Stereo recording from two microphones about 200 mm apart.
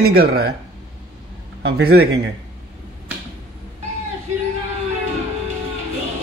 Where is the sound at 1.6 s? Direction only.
50° right (ahead or behind).